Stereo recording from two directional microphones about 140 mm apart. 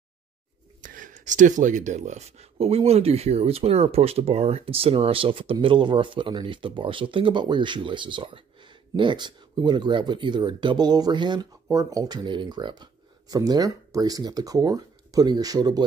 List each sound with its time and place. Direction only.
0.7 s speech: 70° right (ahead or behind); by 15.8 s 25° right (ahead or behind)